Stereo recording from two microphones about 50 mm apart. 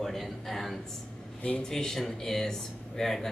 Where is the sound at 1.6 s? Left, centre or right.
Centre.